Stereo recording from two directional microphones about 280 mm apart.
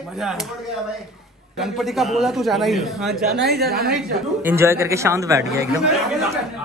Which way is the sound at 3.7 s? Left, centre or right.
Right.